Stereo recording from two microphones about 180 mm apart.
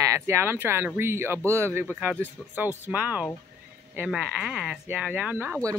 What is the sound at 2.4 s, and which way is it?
Speech, centre (ahead or behind).